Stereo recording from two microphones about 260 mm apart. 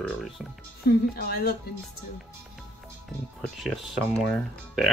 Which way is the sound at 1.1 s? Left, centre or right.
Left.